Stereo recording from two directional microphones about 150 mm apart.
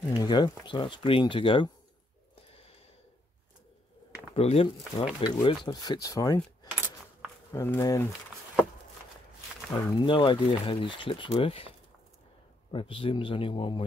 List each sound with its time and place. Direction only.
0.1 s speech: 30° left (ahead or behind)
4.4 s speech: 40° left (ahead or behind); by 8.1 s 20° left (ahead or behind)
9.9 s speech: 35° left (ahead or behind)
12.7 s speech: 35° left (ahead or behind)